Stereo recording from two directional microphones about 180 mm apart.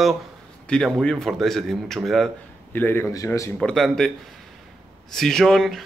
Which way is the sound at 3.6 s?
5° left (ahead or behind).